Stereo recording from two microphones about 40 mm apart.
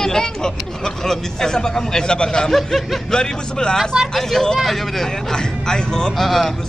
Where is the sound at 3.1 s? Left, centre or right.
Left.